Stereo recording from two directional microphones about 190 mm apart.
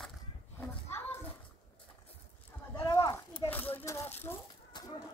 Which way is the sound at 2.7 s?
20° left (ahead or behind).